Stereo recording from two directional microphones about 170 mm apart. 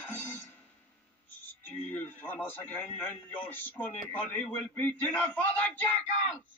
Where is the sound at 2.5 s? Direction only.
10° left (ahead or behind).